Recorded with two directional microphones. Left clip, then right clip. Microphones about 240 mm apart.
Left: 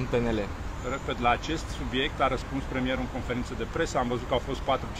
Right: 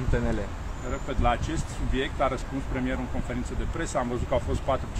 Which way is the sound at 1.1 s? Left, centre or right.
Centre.